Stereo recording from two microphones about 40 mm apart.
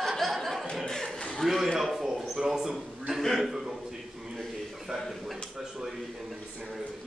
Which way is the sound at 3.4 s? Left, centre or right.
Centre.